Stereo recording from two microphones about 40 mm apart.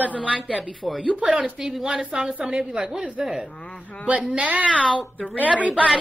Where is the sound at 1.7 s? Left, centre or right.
Centre.